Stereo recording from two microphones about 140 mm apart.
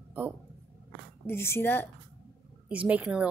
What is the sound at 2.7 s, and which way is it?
Speech, 10° right (ahead or behind).